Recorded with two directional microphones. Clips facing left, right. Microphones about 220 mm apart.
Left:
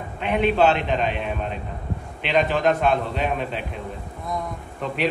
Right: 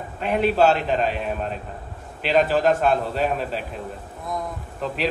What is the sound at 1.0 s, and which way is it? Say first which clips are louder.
Speech: right 1 dB; 40° right (ahead or behind).